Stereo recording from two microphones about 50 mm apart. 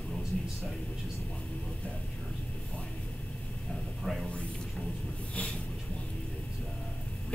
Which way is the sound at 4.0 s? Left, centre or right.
Centre.